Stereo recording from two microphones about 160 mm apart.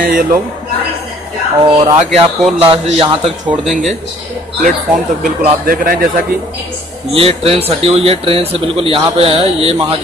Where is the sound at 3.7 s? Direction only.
Centre (ahead or behind).